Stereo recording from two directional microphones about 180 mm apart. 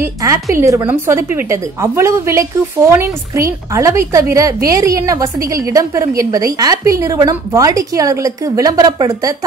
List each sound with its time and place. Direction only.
0.0 s a woman's voice: 20° right (ahead or behind)